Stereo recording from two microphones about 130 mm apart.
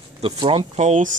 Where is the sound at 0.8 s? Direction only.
70° right (ahead or behind).